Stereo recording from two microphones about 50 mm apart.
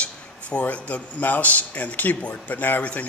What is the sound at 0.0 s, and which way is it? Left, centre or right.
A man's voice, left.